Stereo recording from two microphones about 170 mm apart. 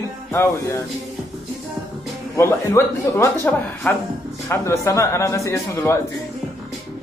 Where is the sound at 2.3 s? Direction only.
15° left (ahead or behind).